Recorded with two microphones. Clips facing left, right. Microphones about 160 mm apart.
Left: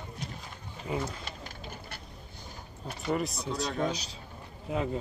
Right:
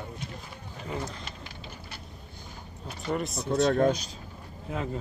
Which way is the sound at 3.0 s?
Centre (ahead or behind).